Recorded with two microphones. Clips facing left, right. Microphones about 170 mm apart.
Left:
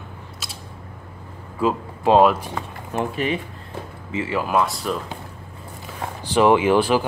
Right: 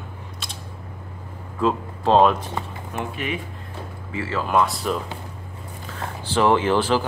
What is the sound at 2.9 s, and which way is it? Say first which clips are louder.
Speech: left 5 dB; 35° left (ahead or behind).